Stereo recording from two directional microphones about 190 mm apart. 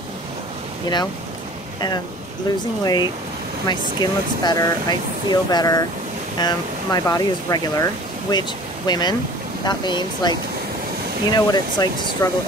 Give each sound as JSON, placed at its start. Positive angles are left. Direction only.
{"t": 2.8, "sound": "speech", "side_deg": 20}